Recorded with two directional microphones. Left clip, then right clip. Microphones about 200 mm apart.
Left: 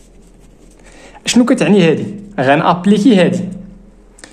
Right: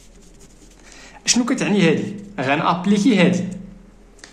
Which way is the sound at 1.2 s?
40° left (ahead or behind).